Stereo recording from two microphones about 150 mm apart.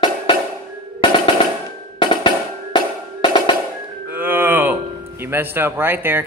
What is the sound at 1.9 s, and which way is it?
Music, 30° left (ahead or behind).